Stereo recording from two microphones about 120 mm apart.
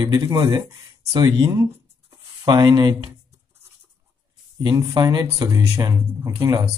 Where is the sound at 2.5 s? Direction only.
35° right (ahead or behind).